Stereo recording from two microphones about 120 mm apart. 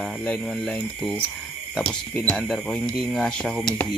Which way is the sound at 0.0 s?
10° left (ahead or behind).